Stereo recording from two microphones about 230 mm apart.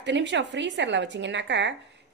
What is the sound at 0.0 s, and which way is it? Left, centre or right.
Speech, right.